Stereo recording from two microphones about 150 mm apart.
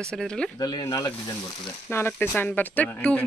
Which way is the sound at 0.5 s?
25° left (ahead or behind).